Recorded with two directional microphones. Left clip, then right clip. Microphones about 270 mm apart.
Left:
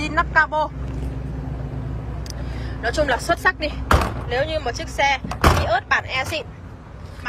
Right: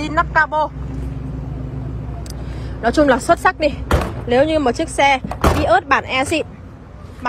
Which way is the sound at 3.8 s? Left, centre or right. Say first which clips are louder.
Left 1 dB; centre.